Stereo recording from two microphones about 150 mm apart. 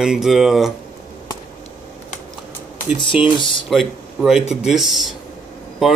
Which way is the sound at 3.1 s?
10° right (ahead or behind).